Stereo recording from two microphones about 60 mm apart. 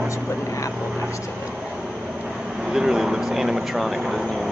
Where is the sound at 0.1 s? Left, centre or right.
Left.